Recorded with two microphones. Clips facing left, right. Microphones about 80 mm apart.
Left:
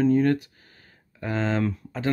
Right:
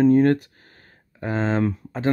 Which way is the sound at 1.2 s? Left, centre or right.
Right.